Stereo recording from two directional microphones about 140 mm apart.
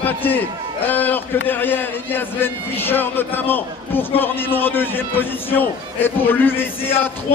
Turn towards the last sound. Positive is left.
turn(degrees=15)  # may be behind; listen again after turning